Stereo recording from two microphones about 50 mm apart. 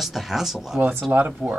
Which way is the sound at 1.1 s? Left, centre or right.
Right.